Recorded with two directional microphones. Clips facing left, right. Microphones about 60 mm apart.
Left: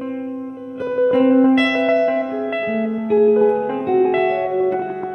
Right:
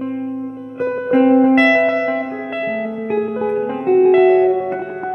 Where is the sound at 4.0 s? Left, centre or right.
Centre.